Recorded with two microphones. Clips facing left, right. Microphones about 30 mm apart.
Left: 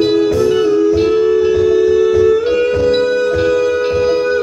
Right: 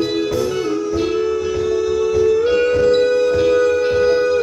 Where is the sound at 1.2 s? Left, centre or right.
Left.